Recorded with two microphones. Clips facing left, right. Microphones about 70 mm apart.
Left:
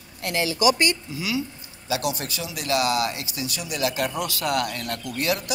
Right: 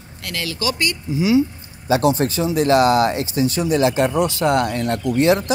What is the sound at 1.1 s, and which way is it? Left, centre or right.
Speech, right.